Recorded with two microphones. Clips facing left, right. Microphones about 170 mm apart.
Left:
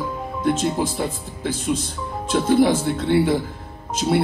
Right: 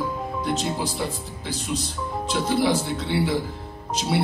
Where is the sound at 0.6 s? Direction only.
50° left (ahead or behind).